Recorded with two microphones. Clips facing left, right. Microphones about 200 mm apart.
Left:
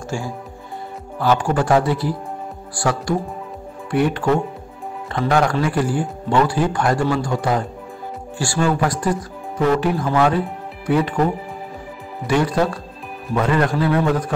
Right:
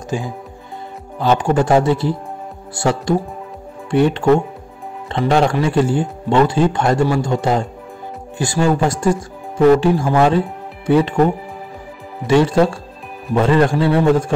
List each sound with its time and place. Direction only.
0.1 s speech: 20° right (ahead or behind)
12.3 s speech: 25° right (ahead or behind)